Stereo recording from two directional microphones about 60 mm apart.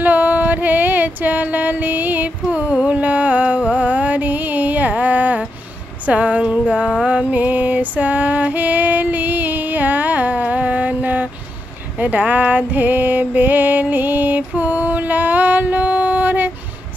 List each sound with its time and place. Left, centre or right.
0.0 s music: right
2.7 s music: centre
6.0 s a sound: right
7.1 s female singing: right
12.0 s music: right